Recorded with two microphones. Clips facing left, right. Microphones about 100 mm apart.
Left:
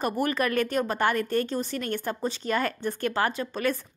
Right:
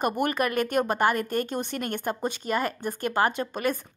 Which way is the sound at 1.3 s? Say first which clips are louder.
Left 1 dB; 50° right (ahead or behind).